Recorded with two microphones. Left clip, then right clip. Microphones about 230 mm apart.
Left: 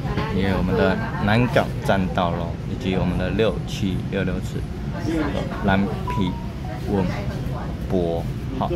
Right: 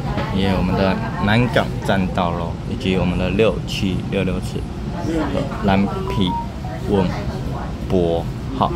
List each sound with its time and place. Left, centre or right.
0.4 s speech: centre
5.7 s speech: centre
7.9 s speech: centre